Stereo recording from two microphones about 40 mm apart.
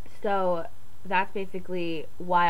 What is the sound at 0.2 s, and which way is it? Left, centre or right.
A woman's voice, centre.